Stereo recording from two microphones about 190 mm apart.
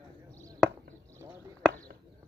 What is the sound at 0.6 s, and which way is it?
Chop, 5° left (ahead or behind).